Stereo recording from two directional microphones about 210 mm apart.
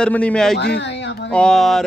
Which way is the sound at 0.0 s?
5° left (ahead or behind).